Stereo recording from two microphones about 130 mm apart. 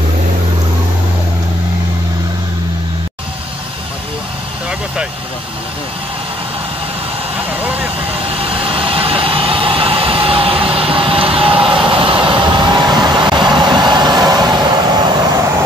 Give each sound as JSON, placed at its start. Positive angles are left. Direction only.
{"t": 7.6, "sound": "vehicle", "side_deg": -10}
{"t": 8.2, "sound": "vehicle", "side_deg": -45}